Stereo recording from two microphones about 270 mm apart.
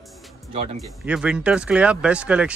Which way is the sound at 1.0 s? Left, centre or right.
Centre.